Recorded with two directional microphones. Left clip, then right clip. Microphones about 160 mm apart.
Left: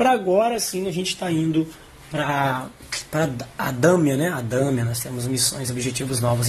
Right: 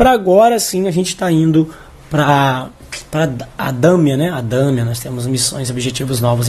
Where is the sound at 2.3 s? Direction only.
30° right (ahead or behind).